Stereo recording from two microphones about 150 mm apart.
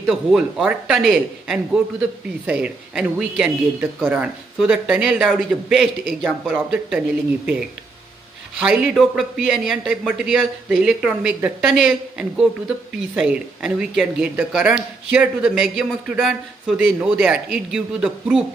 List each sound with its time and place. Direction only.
0.0 s a man's voice: centre (ahead or behind)
8.5 s a man's voice: 5° right (ahead or behind)